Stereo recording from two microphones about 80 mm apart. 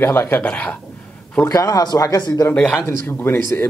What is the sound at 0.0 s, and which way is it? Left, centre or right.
Speech, left.